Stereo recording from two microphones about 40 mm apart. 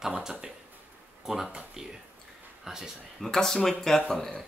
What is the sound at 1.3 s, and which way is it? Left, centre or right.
Speech, right.